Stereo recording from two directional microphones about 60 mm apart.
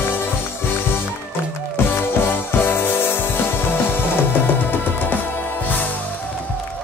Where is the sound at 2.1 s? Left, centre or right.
Left.